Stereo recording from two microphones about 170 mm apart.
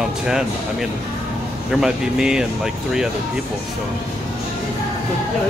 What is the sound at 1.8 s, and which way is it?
Speech, 5° right (ahead or behind).